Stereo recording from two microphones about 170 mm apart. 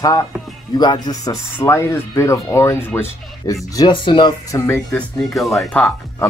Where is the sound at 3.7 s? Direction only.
25° left (ahead or behind).